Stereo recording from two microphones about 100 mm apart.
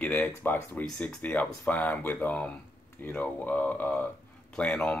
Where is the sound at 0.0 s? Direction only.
15° left (ahead or behind).